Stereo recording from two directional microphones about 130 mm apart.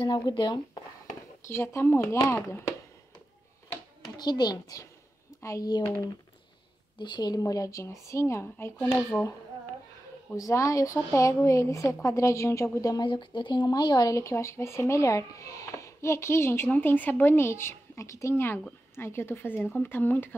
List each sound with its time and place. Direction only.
0.0 s speech: 35° left (ahead or behind)
1.5 s speech: 20° left (ahead or behind)
4.0 s speech: 30° left (ahead or behind)
7.0 s speech: 35° left (ahead or behind); by 9.3 s 15° left (ahead or behind)
10.3 s speech: 25° left (ahead or behind)